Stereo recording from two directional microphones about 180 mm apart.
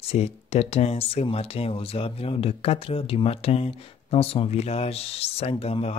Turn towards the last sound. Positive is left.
turn(degrees=35)  # may be behind; listen again after turning